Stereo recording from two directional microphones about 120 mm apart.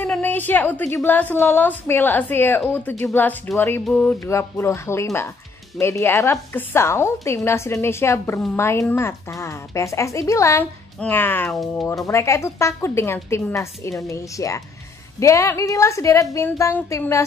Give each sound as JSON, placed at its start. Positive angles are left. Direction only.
{"t": 0.0, "sound": "a sound", "side_deg": 10}
{"t": 0.9, "sound": "a woman's voice", "side_deg": 15}
{"t": 4.2, "sound": "a woman's voice", "side_deg": 20}